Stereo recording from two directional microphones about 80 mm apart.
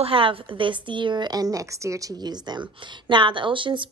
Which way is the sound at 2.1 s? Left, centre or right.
Right.